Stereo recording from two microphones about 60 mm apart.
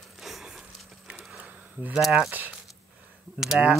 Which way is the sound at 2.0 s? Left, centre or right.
Centre.